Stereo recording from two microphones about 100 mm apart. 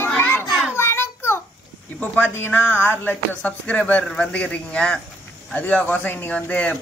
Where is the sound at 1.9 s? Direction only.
15° left (ahead or behind).